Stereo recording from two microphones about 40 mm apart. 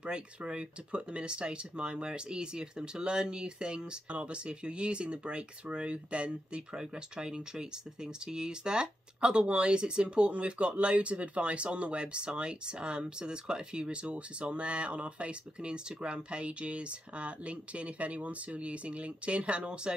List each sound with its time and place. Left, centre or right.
0.0 s speech: right